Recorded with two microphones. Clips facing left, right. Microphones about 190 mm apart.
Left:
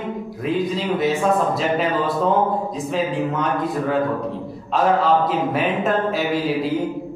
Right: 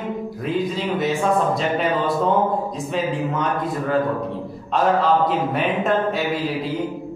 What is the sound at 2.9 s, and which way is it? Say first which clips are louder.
A man's voice: left 1 dB; centre (ahead or behind).